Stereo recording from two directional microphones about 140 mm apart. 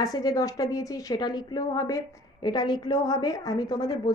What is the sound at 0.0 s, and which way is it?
A woman's voice, 25° left (ahead or behind).